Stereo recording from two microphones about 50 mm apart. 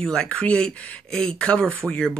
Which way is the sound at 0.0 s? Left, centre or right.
Centre.